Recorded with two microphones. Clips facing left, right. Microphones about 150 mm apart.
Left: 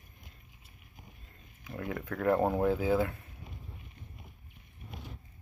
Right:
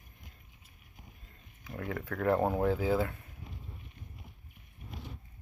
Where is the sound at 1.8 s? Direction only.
25° left (ahead or behind).